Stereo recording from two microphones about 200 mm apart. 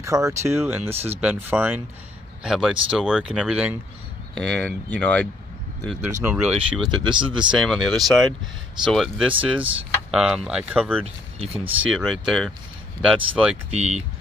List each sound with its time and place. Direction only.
0.0 s speech: 15° right (ahead or behind); by 5.3 s 5° left (ahead or behind)
6.2 s speech: 5° right (ahead or behind)
7.0 s speech: 25° right (ahead or behind)
7.5 s speech: centre (ahead or behind)
13.7 s speech: 30° right (ahead or behind)